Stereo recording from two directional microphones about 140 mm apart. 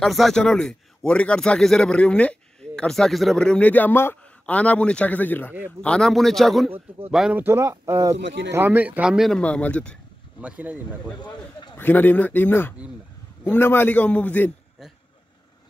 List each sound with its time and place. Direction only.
0.0 s a man's voice: centre (ahead or behind)
7.3 s speech: 15° right (ahead or behind)
9.4 s speech: 10° left (ahead or behind)
10.4 s speech: 10° right (ahead or behind)
11.7 s speech: 15° left (ahead or behind)